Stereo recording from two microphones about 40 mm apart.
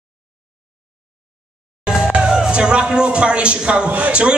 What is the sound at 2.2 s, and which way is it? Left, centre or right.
A man's voice, right.